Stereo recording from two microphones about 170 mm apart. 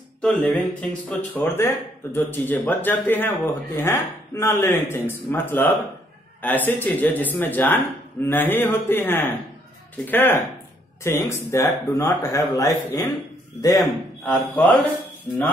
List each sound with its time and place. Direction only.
0.2 s speech: 5° left (ahead or behind)